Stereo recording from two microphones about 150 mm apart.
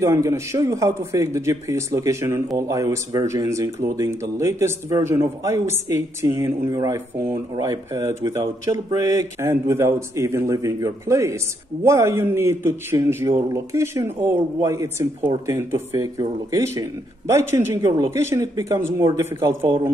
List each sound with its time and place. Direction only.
0.0 s a man's voice: 20° right (ahead or behind)